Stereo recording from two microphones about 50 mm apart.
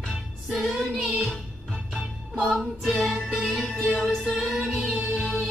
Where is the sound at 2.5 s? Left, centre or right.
Centre.